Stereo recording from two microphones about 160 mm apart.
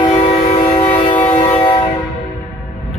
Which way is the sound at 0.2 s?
30° left (ahead or behind).